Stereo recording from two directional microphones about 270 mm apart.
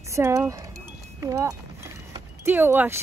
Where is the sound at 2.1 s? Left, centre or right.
Centre.